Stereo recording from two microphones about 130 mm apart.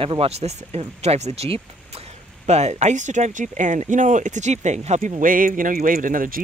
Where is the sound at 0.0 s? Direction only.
45° right (ahead or behind).